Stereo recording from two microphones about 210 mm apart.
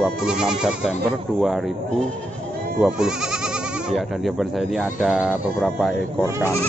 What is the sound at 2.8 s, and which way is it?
Speech, 5° right (ahead or behind).